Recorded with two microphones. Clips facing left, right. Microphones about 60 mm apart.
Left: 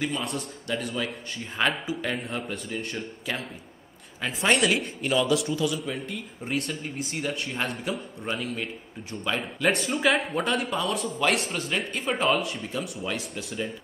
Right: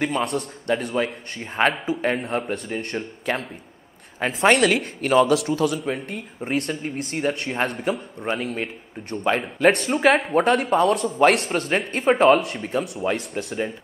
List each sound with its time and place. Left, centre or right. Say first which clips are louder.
0.0 s speech: right 6 dB; right
2.2 s speech: right 7 dB; right
4.2 s speech: right 6 dB; right
5.3 s a man's voice: right 4 dB; right
5.6 s speech: right 5 dB; right
12.4 s a man's voice: right 5 dB; right